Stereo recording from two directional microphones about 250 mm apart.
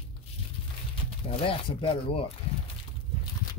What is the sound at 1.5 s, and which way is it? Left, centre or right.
Speech, left.